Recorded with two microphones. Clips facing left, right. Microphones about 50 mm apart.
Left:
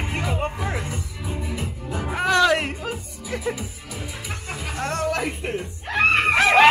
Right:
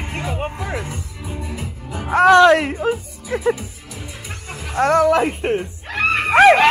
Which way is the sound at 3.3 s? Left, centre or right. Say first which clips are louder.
Right 8 dB; right.